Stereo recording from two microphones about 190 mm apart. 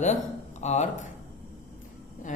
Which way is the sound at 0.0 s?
40° left (ahead or behind).